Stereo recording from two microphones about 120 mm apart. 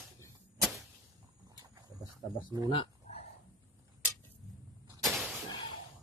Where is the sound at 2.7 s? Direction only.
50° left (ahead or behind).